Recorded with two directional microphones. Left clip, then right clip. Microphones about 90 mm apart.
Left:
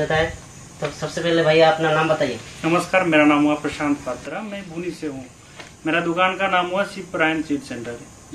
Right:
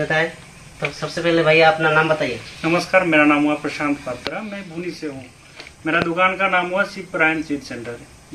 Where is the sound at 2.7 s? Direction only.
20° left (ahead or behind).